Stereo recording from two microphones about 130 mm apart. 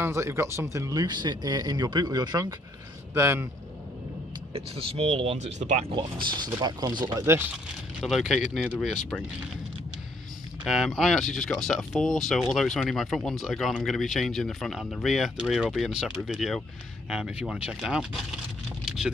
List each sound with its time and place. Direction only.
0.0 s speech: 20° right (ahead or behind)
3.2 s speech: 15° right (ahead or behind)
4.6 s speech: 45° right (ahead or behind)
5.9 s speech: 35° right (ahead or behind)
7.2 s speech: 15° right (ahead or behind)
8.0 s speech: centre (ahead or behind)
10.6 s speech: centre (ahead or behind)
18.9 s vehicle: 5° right (ahead or behind)